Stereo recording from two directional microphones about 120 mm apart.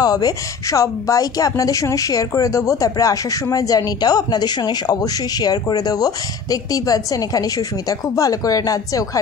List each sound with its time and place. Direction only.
0.0 s a woman's voice: 30° left (ahead or behind)